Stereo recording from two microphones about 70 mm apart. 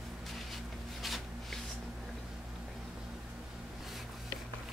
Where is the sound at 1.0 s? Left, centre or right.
Centre.